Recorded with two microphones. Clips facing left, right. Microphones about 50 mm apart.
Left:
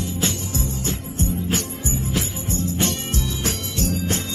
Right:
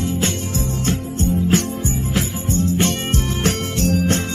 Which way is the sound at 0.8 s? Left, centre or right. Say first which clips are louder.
Right 5 dB; right.